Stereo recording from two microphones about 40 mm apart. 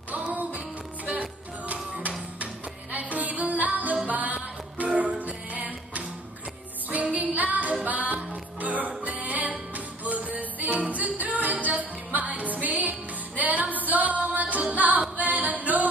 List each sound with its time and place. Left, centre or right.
0.3 s music: right
13.4 s female singing: right
15.0 s singing: right